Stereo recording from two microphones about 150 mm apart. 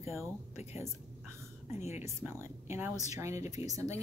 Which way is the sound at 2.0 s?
20° right (ahead or behind).